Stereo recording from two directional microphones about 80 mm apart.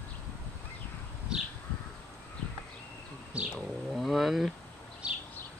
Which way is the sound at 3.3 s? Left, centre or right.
Centre.